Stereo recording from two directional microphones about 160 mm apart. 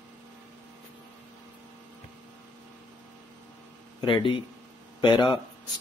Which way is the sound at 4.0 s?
30° left (ahead or behind).